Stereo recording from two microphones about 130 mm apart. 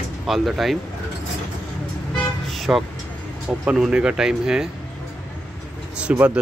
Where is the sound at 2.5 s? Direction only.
Centre (ahead or behind).